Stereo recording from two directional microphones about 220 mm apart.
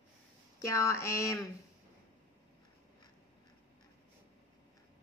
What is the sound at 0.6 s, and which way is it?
Speech, 15° left (ahead or behind).